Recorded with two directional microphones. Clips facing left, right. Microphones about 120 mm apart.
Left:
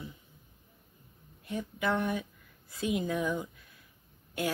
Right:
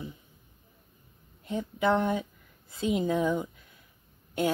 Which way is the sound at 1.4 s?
25° right (ahead or behind).